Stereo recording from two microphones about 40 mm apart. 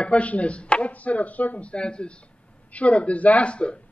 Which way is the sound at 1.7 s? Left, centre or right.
Left.